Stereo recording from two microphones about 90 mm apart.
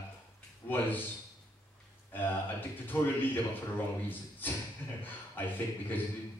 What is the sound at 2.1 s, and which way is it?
Speech, 20° left (ahead or behind).